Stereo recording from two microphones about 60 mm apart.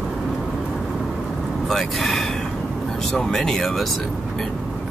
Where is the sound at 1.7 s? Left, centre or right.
Centre.